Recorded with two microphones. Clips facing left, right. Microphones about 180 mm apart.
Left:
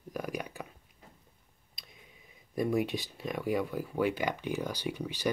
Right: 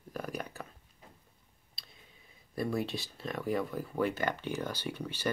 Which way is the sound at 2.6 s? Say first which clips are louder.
Left 4 dB; 15° left (ahead or behind).